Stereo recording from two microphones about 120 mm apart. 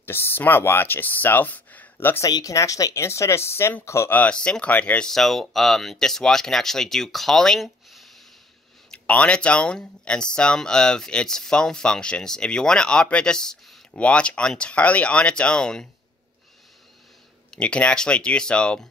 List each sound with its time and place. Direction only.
0.0 s speech: 20° left (ahead or behind)
2.2 s speech: 30° left (ahead or behind); by 15.9 s 5° left (ahead or behind)
17.5 s speech: 10° left (ahead or behind)